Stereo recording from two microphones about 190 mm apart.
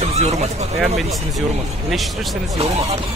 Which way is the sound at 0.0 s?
35° right (ahead or behind).